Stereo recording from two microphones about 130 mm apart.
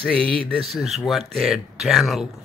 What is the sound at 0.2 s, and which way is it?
Speech, 45° right (ahead or behind).